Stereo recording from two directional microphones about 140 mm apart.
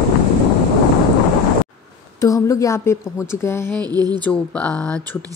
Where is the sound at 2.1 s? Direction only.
25° left (ahead or behind).